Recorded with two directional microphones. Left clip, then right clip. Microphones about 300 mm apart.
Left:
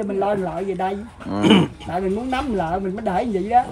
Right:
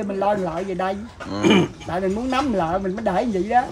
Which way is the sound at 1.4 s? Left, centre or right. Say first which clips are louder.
Left 1 dB; left.